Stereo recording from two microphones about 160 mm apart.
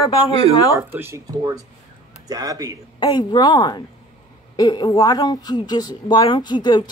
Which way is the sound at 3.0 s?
30° left (ahead or behind).